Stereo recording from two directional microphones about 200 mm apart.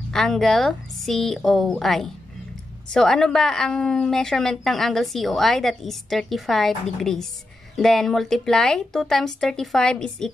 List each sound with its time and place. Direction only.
0.1 s a woman's voice: centre (ahead or behind)